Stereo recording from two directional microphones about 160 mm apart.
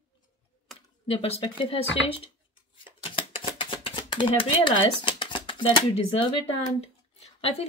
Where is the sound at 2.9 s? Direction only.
30° left (ahead or behind).